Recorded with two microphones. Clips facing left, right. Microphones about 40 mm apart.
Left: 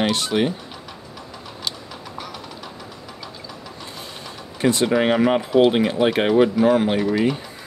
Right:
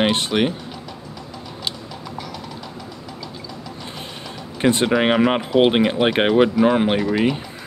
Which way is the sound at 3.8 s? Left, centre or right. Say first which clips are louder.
Right 1 dB; right.